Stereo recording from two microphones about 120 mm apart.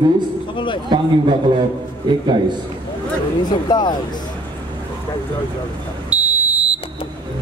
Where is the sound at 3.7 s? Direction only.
35° left (ahead or behind).